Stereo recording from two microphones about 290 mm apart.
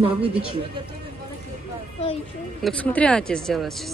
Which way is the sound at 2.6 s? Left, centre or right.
Centre.